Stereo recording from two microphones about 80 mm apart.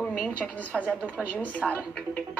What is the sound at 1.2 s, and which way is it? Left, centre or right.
Speech, centre.